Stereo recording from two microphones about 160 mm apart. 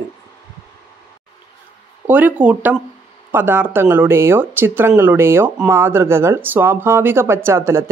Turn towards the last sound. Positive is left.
turn(degrees=-15)  # may be behind; listen again after turning